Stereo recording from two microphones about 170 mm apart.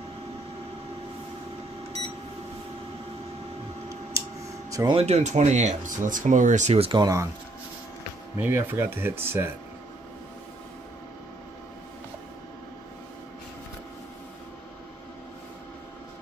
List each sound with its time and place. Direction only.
4.2 s a sound: 20° right (ahead or behind)
4.9 s speech: 40° right (ahead or behind); by 7.2 s 20° right (ahead or behind)
8.4 s speech: 10° right (ahead or behind)